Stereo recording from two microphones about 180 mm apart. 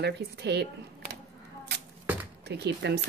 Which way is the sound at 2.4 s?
70° right (ahead or behind).